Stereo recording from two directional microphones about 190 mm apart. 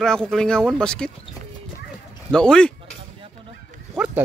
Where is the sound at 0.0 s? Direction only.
5° left (ahead or behind).